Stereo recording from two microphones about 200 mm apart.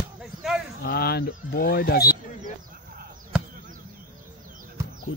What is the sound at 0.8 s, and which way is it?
Speech, 55° left (ahead or behind).